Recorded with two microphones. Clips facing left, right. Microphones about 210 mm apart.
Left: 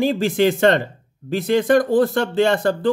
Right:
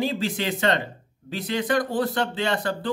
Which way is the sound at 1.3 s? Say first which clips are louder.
Left 9 dB; 50° left (ahead or behind).